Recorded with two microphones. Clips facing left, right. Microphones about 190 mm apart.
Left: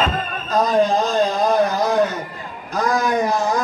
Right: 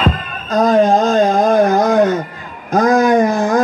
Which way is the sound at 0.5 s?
50° right (ahead or behind).